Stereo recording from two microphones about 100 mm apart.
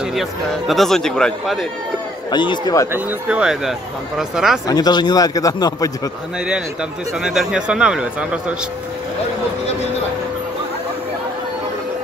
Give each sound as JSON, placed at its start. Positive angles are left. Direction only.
{"t": 0.0, "sound": "speech", "side_deg": 0}
{"t": 2.3, "sound": "speech", "side_deg": 50}
{"t": 3.3, "sound": "a man's voice", "side_deg": -10}
{"t": 4.6, "sound": "a man's voice", "side_deg": 40}
{"t": 6.4, "sound": "a man's voice", "side_deg": -10}